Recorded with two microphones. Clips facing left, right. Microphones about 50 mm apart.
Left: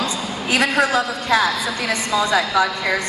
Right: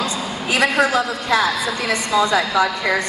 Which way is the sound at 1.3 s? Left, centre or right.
Right.